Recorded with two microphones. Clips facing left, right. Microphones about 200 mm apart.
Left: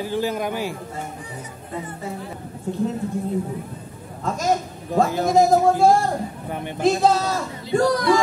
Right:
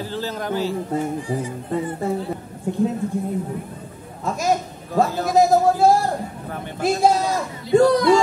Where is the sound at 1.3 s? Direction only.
30° right (ahead or behind).